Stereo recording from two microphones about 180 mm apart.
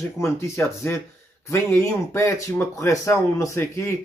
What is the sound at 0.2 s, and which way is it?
A man's voice, 15° left (ahead or behind).